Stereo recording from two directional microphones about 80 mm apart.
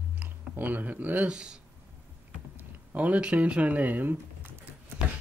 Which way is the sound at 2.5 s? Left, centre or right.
Centre.